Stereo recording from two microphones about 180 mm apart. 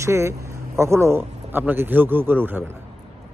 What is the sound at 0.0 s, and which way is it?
A man's voice, 15° right (ahead or behind).